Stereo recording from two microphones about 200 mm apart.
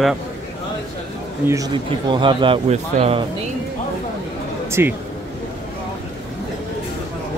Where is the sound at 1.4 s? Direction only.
20° right (ahead or behind).